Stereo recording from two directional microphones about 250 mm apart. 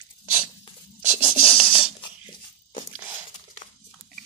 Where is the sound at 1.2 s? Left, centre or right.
Centre.